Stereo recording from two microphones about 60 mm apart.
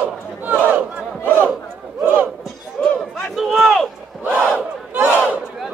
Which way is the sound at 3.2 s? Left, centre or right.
Centre.